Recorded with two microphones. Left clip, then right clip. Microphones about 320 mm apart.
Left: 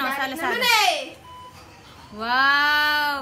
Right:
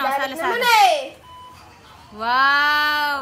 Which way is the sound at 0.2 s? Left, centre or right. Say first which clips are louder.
Right 2 dB; centre.